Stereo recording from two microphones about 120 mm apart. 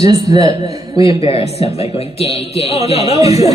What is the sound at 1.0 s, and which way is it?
A man's voice, 55° left (ahead or behind).